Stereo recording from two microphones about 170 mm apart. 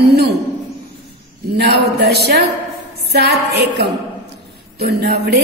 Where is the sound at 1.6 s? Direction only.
80° right.